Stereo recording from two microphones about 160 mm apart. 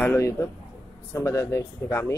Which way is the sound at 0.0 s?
15° left (ahead or behind).